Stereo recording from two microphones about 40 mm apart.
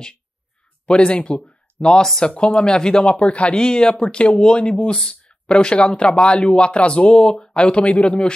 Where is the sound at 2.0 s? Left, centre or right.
Centre.